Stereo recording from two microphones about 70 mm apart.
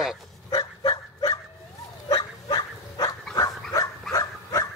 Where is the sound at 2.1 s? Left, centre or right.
Left.